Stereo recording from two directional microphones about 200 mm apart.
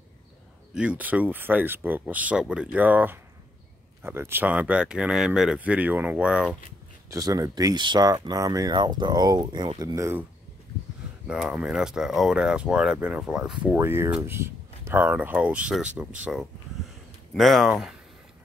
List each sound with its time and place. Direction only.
0.7 s speech: 5° right (ahead or behind)
7.1 s speech: 15° right (ahead or behind)
11.2 s speech: 5° right (ahead or behind)